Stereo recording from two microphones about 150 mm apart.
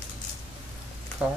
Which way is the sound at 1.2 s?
10° right (ahead or behind).